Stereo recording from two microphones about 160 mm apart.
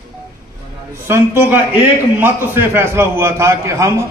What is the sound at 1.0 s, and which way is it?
A man's voice, 15° right (ahead or behind).